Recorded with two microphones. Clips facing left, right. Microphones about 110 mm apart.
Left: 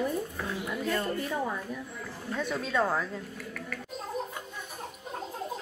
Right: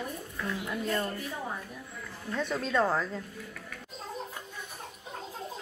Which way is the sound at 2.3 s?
5° left (ahead or behind).